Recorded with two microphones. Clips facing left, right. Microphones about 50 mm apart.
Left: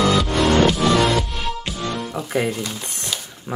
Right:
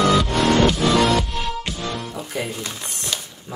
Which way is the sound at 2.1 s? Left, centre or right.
Left.